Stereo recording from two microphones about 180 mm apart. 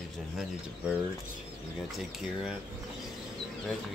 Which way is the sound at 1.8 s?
Centre (ahead or behind).